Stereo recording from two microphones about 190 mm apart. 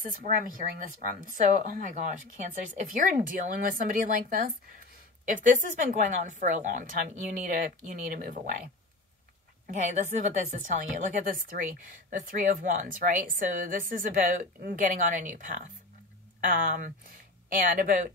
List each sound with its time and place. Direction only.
0.0 s a woman's voice: 45° right (ahead or behind)
9.7 s a woman's voice: 40° right (ahead or behind)